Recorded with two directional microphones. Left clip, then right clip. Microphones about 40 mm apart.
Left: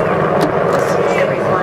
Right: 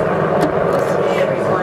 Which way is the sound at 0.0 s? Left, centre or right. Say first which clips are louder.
Left 2 dB; left.